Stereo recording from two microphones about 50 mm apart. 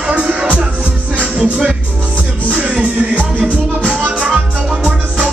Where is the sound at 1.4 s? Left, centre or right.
Centre.